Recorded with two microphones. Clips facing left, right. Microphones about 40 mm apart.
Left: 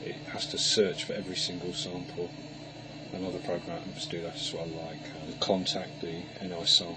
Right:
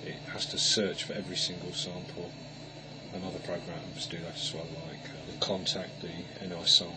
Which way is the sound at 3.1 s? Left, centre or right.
Left.